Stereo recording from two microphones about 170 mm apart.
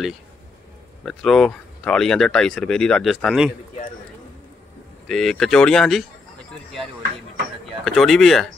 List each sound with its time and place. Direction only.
1.0 s speech: centre (ahead or behind)
5.0 s speech: centre (ahead or behind)
7.8 s speech: centre (ahead or behind)